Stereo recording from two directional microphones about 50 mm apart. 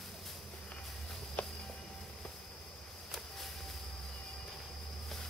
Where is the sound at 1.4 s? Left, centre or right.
Left.